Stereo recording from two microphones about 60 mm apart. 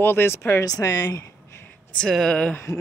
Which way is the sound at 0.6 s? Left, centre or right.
Left.